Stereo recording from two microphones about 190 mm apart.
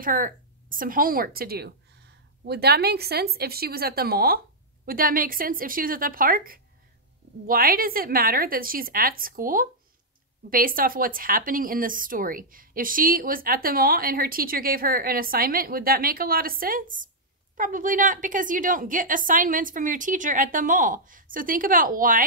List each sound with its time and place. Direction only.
0.0 s speech: 45° right (ahead or behind)